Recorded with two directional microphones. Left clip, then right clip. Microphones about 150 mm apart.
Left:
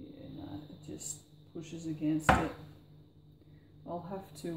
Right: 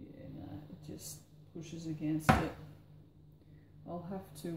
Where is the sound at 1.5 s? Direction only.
30° left (ahead or behind).